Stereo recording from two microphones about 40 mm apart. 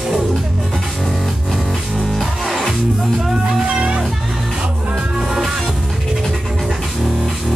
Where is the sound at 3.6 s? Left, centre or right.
Right.